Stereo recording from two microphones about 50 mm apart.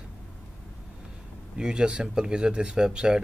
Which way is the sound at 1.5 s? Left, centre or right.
Centre.